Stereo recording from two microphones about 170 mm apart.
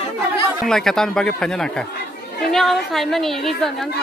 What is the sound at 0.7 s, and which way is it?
A woman's voice, 5° left (ahead or behind).